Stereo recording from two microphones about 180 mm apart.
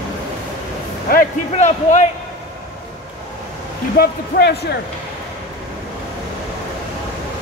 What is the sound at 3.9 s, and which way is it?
Speech, 60° left (ahead or behind).